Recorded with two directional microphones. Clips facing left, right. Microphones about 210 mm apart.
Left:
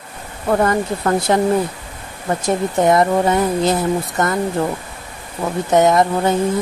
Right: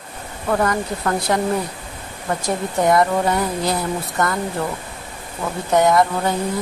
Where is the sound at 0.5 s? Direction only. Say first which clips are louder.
Left 4 dB; 30° left (ahead or behind).